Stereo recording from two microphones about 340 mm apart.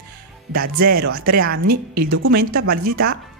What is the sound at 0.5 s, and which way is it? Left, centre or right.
A woman's voice, right.